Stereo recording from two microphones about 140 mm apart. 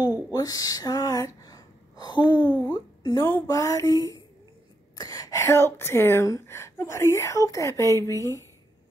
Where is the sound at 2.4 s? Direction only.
15° left (ahead or behind).